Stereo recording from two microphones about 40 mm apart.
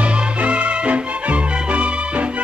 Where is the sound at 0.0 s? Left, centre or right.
Right.